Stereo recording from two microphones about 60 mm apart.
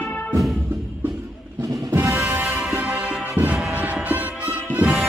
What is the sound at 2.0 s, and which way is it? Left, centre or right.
Music, right.